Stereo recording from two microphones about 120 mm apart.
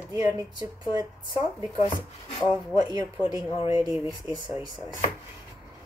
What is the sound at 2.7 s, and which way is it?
Speech, 35° right (ahead or behind).